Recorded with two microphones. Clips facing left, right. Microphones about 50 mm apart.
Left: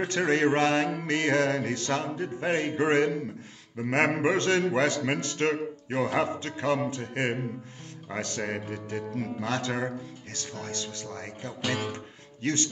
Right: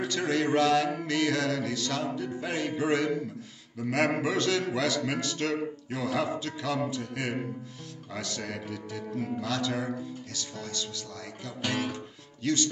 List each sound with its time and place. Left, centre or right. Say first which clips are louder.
0.0 s a man's voice: left 4 dB; left
11.9 s music: even; left